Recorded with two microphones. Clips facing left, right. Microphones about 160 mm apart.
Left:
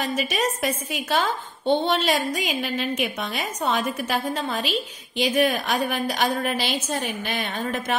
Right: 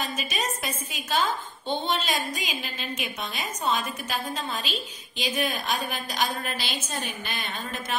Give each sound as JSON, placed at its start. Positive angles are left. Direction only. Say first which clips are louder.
{"t": 0.0, "sound": "a woman's voice", "louder": "left 6 dB", "side_deg": 65}